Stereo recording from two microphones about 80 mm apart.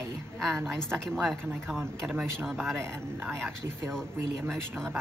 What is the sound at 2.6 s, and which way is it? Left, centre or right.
Speech, right.